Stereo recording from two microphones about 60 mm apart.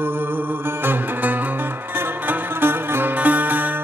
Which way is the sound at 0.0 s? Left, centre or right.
Right.